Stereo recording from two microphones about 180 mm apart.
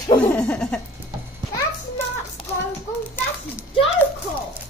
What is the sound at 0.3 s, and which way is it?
Laughter, 5° left (ahead or behind).